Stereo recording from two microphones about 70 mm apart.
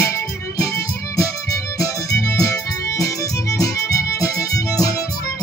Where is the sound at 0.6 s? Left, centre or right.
Left.